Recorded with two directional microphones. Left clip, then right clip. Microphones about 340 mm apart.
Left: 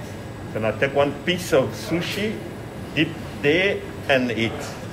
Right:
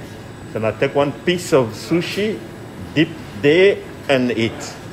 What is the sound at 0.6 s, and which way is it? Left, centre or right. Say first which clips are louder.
A man's voice: right 3 dB; centre.